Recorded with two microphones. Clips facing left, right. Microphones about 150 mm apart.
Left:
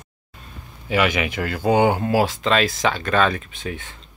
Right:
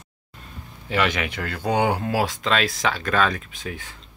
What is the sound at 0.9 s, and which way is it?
Speech, 5° left (ahead or behind).